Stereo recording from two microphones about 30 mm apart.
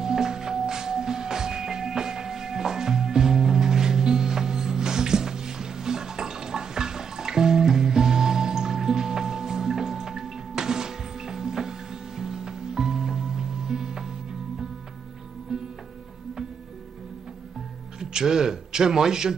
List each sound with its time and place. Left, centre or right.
0.0 s music: centre
15.5 s music: centre
17.9 s a sound: right